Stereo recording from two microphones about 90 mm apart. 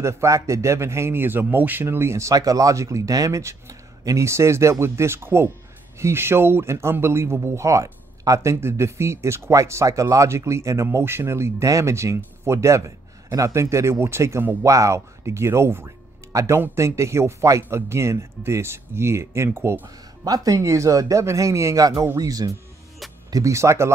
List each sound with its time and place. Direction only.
0.0 s speech: 35° right (ahead or behind)
20.2 s speech: 40° right (ahead or behind)